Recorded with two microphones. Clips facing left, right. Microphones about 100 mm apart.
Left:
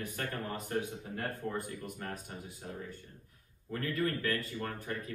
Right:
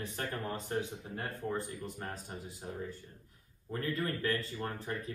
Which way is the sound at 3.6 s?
25° right (ahead or behind).